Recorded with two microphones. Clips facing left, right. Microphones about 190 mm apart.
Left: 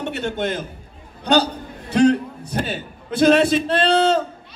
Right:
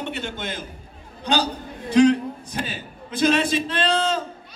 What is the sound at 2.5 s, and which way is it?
A man's voice, 65° left (ahead or behind).